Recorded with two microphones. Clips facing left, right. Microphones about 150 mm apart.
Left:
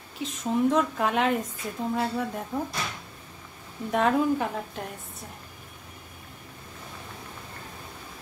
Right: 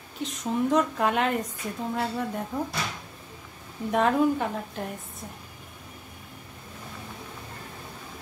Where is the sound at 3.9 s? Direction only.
Centre (ahead or behind).